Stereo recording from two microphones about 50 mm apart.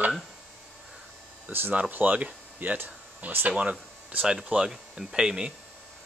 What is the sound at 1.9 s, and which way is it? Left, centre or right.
Speech, right.